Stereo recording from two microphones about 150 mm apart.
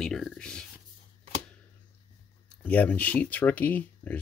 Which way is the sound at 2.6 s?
10° left (ahead or behind).